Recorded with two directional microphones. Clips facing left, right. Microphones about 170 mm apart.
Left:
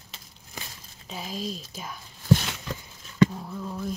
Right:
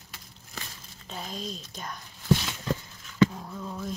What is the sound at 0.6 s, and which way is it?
Crumpling, 15° left (ahead or behind).